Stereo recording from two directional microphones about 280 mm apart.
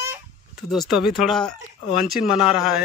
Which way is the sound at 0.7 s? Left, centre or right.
Centre.